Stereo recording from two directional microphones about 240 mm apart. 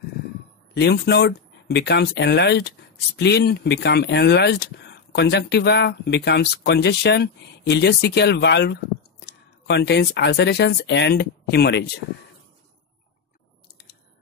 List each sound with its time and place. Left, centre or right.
0.7 s speech: left